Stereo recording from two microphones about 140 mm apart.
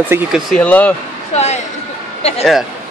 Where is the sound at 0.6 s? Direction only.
10° left (ahead or behind).